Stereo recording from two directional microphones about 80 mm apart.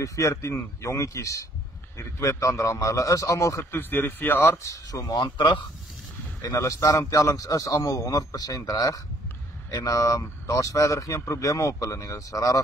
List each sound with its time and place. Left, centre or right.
0.0 s a man's voice: left
4.6 s speech: left
6.4 s speech: left